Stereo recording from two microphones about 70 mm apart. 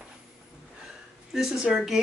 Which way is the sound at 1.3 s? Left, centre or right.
Centre.